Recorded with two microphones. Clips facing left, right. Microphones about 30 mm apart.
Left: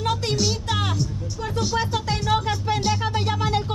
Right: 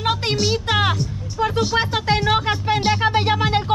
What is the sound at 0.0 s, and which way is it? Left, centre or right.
Music, right.